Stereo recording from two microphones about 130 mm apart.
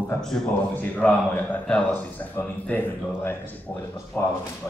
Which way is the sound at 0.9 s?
10° left (ahead or behind).